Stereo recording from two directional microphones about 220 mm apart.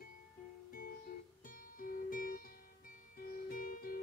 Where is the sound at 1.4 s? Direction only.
40° left (ahead or behind).